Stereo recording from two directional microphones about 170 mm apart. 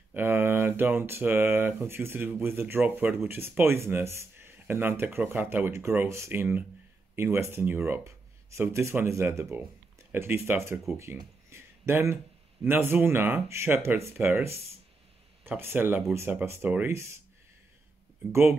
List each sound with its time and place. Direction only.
0.1 s speech: 15° right (ahead or behind)
11.0 s a sound: 15° right (ahead or behind)
12.6 s speech: 10° right (ahead or behind)
18.3 s speech: 15° right (ahead or behind)